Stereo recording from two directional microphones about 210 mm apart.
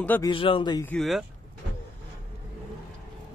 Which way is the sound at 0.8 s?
Centre (ahead or behind).